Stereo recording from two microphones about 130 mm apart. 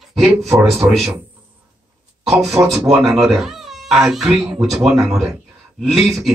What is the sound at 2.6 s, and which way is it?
Speech, 15° right (ahead or behind).